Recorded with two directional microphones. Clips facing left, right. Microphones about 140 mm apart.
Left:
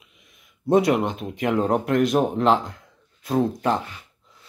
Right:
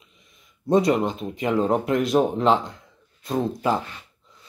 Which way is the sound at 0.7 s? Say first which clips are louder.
Left 1 dB; 5° left (ahead or behind).